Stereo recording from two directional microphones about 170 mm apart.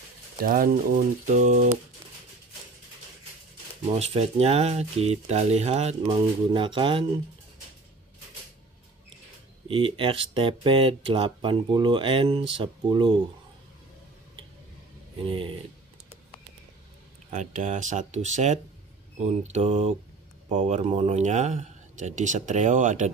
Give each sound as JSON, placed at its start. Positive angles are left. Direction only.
{"t": 0.4, "sound": "speech", "side_deg": -55}
{"t": 3.9, "sound": "speech", "side_deg": -40}
{"t": 9.7, "sound": "speech", "side_deg": -30}
{"t": 15.2, "sound": "speech", "side_deg": -30}
{"t": 17.3, "sound": "speech", "side_deg": -45}